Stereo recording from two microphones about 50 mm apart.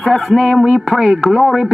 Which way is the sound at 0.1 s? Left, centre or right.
Centre.